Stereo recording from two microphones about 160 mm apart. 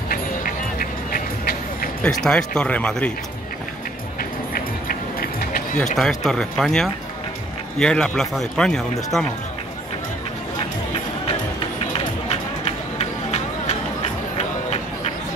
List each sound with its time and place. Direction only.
0.1 s music: 60° left (ahead or behind)
2.0 s a man's voice: 5° left (ahead or behind)
4.2 s music: 65° left (ahead or behind)
5.9 s a man's voice: centre (ahead or behind)
11.9 s music: 40° left (ahead or behind)